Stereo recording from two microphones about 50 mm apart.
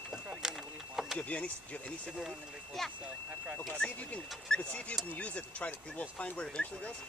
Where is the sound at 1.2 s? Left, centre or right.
Left.